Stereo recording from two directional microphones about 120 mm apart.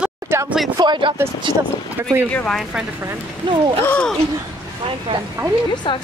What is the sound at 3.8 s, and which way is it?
Speech, 15° left (ahead or behind).